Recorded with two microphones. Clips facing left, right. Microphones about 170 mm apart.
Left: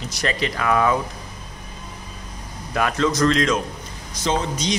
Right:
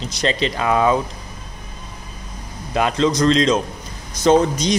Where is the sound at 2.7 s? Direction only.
25° right (ahead or behind).